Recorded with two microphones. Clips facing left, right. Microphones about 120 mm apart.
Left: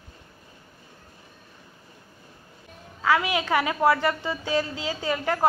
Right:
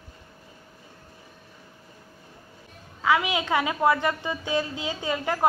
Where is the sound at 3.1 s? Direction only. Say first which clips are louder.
Even; 20° right (ahead or behind).